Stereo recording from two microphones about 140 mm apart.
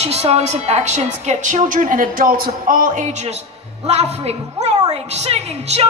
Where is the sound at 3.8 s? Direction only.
50° right (ahead or behind).